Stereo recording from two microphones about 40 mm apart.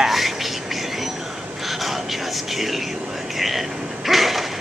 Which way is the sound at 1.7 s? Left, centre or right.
Centre.